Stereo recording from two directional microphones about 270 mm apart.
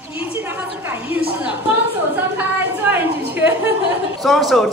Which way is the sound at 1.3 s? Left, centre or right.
Centre.